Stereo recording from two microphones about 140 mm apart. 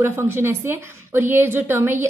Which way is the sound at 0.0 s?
15° right (ahead or behind).